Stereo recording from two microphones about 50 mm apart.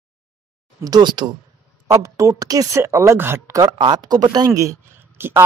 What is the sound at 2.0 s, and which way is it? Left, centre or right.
Speech, right.